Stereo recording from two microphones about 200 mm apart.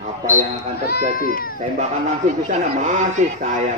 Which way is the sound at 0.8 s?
50° left (ahead or behind).